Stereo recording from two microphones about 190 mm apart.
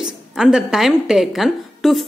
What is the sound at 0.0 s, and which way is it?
A woman's voice, 5° right (ahead or behind).